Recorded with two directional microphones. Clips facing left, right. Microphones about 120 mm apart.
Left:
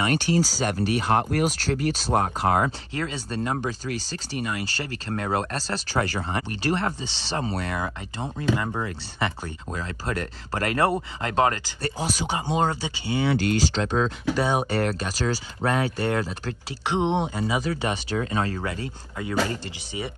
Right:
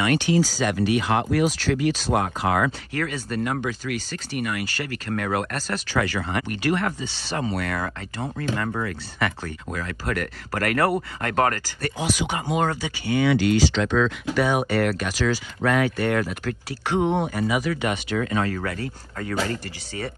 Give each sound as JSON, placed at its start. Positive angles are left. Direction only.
{"t": 0.0, "sound": "speech", "side_deg": 40}
{"t": 2.9, "sound": "speech", "side_deg": 25}
{"t": 12.0, "sound": "speech", "side_deg": 35}
{"t": 14.3, "sound": "speech", "side_deg": 30}